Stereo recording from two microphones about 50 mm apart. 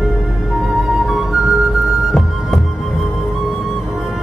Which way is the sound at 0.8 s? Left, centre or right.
Centre.